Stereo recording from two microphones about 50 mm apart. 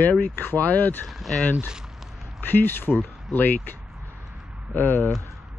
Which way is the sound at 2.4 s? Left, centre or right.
Left.